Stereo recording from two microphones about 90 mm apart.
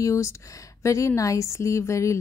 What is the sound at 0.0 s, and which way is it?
Speech, 35° left (ahead or behind).